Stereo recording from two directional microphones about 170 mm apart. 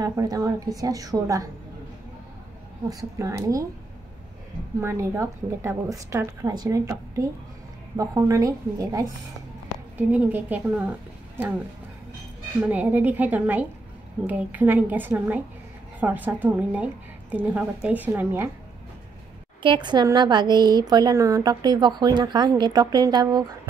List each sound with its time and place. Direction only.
0.0 s a woman's voice: 20° right (ahead or behind)
2.9 s a woman's voice: 20° right (ahead or behind)
4.7 s a woman's voice: 15° right (ahead or behind)
19.6 s a woman's voice: 25° right (ahead or behind)